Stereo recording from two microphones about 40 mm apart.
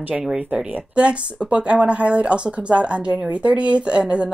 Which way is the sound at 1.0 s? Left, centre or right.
Right.